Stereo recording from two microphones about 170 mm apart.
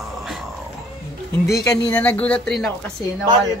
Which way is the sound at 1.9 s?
10° left (ahead or behind).